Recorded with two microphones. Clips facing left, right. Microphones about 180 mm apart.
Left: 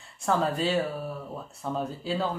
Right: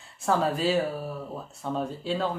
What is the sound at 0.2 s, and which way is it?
Speech, centre (ahead or behind).